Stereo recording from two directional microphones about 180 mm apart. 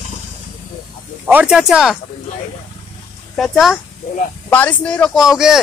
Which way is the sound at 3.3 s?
Centre (ahead or behind).